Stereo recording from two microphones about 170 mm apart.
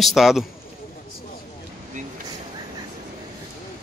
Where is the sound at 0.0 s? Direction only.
Centre (ahead or behind).